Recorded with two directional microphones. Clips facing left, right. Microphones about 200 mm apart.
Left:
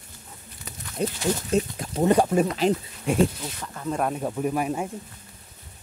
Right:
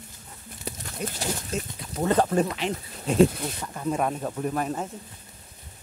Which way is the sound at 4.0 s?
5° left (ahead or behind).